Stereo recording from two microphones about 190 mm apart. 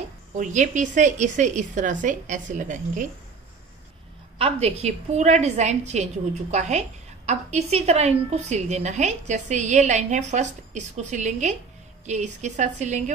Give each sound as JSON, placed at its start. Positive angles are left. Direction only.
{"t": 0.4, "sound": "a woman's voice", "side_deg": -40}
{"t": 4.4, "sound": "a woman's voice", "side_deg": -30}